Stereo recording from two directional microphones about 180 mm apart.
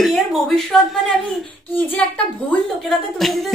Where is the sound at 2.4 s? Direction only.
Centre (ahead or behind).